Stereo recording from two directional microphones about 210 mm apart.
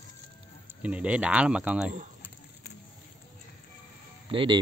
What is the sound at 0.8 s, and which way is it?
Speech, 5° right (ahead or behind).